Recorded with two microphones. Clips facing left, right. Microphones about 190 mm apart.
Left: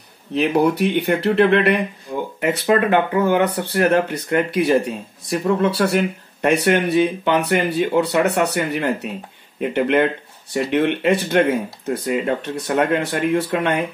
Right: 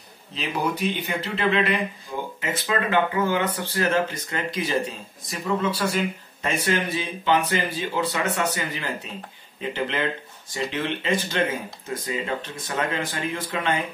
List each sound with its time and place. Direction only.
0.3 s speech: 60° left (ahead or behind)